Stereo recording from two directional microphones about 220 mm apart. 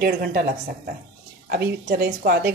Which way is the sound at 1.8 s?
45° right (ahead or behind).